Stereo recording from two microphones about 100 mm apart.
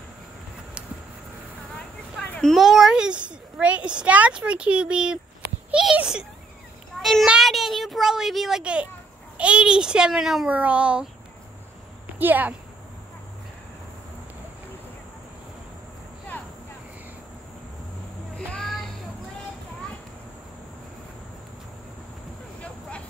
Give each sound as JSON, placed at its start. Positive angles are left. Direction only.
{"t": 2.4, "sound": "a child's voice", "side_deg": 0}
{"t": 10.5, "sound": "a child's voice", "side_deg": -15}
{"t": 12.2, "sound": "a child's voice", "side_deg": -20}
{"t": 18.3, "sound": "a sound", "side_deg": 5}
{"t": 22.6, "sound": "vehicle", "side_deg": 10}